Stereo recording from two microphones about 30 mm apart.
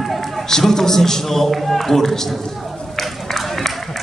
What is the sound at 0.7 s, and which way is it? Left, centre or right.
A man's voice, centre.